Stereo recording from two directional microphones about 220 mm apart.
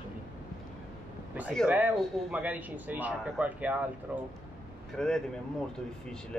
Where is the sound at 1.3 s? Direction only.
Centre (ahead or behind).